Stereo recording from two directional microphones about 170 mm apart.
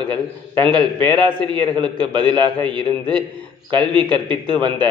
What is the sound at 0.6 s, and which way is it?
Speech, 5° left (ahead or behind).